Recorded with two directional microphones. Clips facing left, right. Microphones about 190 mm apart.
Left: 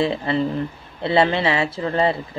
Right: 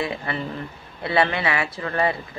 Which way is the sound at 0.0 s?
25° left (ahead or behind).